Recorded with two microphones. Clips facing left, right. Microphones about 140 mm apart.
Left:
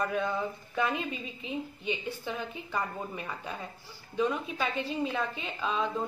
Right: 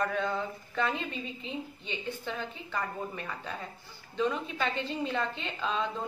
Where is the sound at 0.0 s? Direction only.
10° left (ahead or behind).